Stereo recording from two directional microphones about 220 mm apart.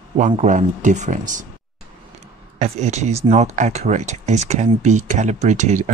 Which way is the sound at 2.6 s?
30° right (ahead or behind).